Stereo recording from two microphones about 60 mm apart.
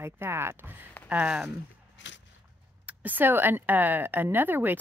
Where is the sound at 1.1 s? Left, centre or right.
Right.